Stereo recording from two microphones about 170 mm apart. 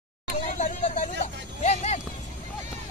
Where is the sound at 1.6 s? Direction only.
40° left (ahead or behind).